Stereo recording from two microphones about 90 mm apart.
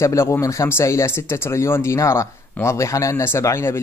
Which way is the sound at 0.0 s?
35° left (ahead or behind).